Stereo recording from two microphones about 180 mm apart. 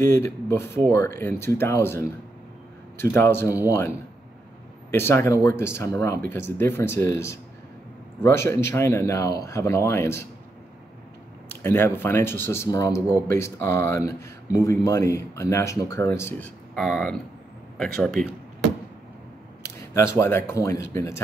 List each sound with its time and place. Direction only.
0.0 s speech: 15° left (ahead or behind)
11.6 s speech: 10° left (ahead or behind)
19.9 s speech: 15° left (ahead or behind)